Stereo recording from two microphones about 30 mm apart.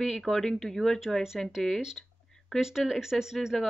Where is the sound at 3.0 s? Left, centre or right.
Centre.